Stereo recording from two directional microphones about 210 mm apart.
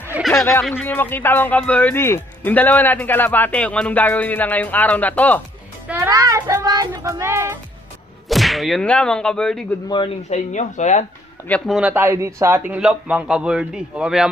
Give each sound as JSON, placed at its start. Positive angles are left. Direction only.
{"t": 0.1, "sound": "a sound", "side_deg": -5}
{"t": 0.7, "sound": "speech", "side_deg": 10}
{"t": 5.9, "sound": "speech", "side_deg": -15}
{"t": 8.3, "sound": "whip", "side_deg": 0}
{"t": 9.8, "sound": "speech", "side_deg": 25}
{"t": 11.4, "sound": "speech", "side_deg": 5}